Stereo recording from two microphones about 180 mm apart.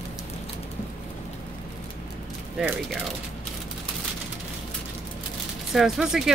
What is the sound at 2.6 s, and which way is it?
Speech, 5° right (ahead or behind).